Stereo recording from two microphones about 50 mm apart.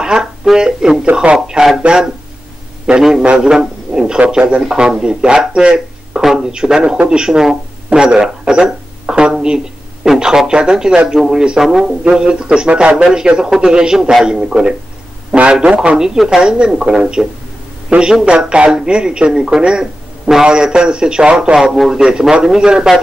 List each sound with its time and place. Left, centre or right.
0.0 s a man's voice: centre
4.3 s a man's voice: right
9.0 s a sound: centre
10.0 s a man's voice: centre
16.1 s speech: centre
21.5 s a man's voice: centre
22.3 s speech: centre